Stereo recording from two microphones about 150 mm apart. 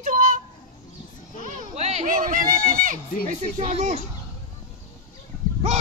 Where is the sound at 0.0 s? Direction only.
60° right (ahead or behind).